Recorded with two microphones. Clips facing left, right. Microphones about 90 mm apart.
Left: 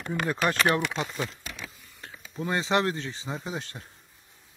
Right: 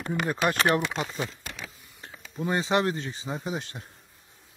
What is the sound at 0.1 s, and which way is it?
Speech, 15° right (ahead or behind).